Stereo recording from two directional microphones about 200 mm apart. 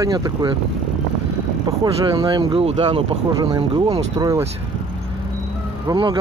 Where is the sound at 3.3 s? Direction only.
20° right (ahead or behind).